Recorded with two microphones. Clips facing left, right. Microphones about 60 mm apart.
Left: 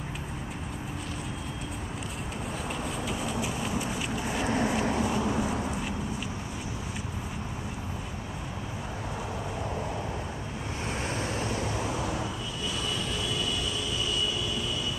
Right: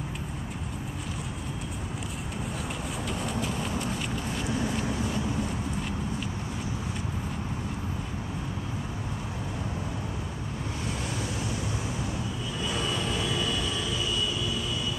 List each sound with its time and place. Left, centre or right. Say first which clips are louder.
3.0 s vehicle: right 2 dB; centre
4.5 s a sound: left 3 dB; left
11.1 s vehicle: left 2 dB; left
12.7 s vehicle: right 4 dB; right